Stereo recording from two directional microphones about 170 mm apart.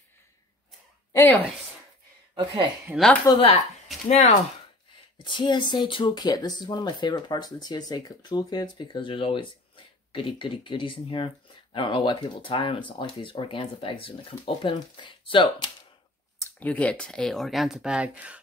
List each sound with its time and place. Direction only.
1.1 s a woman's voice: 10° left (ahead or behind)
2.3 s speech: 25° right (ahead or behind)
2.9 s speech: 5° right (ahead or behind)
3.3 s speech: 25° left (ahead or behind)
4.1 s speech: 45° left (ahead or behind)
5.2 s speech: 30° left (ahead or behind)
16.3 s speech: 10° left (ahead or behind); by 18.4 s 5° right (ahead or behind)